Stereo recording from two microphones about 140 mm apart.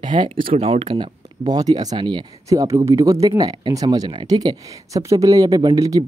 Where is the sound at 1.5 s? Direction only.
30° right (ahead or behind).